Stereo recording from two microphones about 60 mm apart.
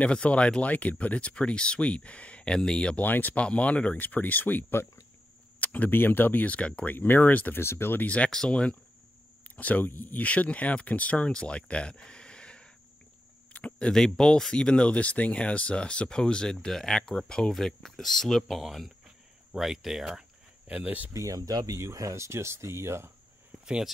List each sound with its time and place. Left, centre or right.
0.0 s speech: left
3.0 s speech: left
7.6 s speech: left
8.0 s speech: left; by 18.6 s centre
18.6 s speech: centre
20.6 s speech: right
21.1 s speech: right
21.8 s speech: right
23.6 s speech: centre